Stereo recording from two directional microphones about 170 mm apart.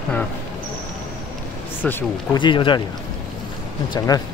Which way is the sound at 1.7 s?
10° left (ahead or behind).